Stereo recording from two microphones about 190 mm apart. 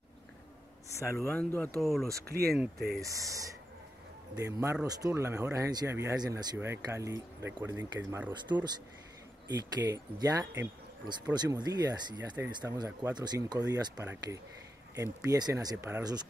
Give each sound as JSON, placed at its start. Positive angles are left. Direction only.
{"t": 0.9, "sound": "speech", "side_deg": 15}
{"t": 2.1, "sound": "speech", "side_deg": -55}
{"t": 3.0, "sound": "speech", "side_deg": -15}